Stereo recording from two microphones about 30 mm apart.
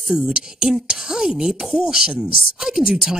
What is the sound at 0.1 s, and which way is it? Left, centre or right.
Speech, right.